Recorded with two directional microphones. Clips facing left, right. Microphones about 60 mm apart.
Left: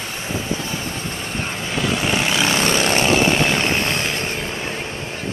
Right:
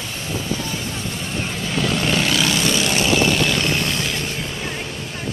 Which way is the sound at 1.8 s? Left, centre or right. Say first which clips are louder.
Even; centre.